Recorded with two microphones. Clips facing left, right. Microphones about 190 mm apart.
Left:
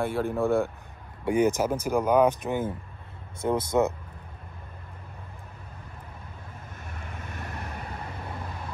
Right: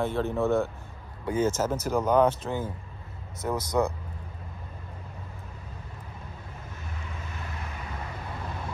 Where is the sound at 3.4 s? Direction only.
25° left (ahead or behind).